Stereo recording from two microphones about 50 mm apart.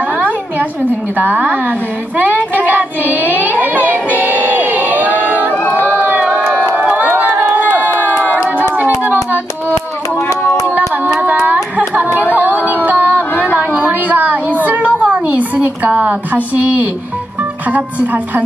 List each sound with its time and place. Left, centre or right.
1.1 s a woman's voice: right
2.5 s child singing: right
5.2 s crowd: right
5.5 s crowd: left
5.9 s crowd: right
7.9 s crowd: left
8.5 s hands: right
11.1 s child singing: right
12.4 s a sound: right
13.3 s a sound: left
13.7 s a sound: right
17.6 s a woman's voice: right